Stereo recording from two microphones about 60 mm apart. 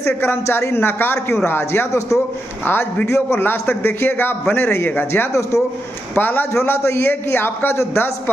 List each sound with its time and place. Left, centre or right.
0.0 s a man's voice: left
2.6 s a man's voice: left
6.5 s a man's voice: left